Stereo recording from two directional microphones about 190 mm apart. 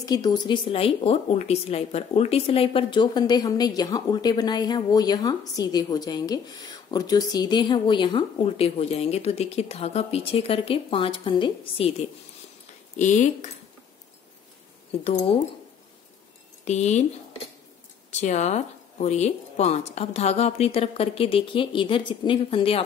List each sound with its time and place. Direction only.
0.0 s a woman's voice: 20° left (ahead or behind); by 13.5 s 40° left (ahead or behind)
15.0 s a woman's voice: 35° left (ahead or behind)
16.6 s a woman's voice: 35° left (ahead or behind)
18.1 s a woman's voice: 35° left (ahead or behind)